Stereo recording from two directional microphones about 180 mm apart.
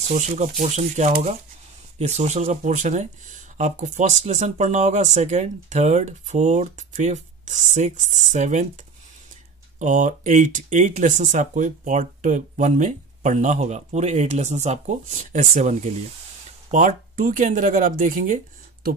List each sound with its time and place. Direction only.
0.1 s speech: 40° right (ahead or behind)
9.8 s speech: 45° right (ahead or behind)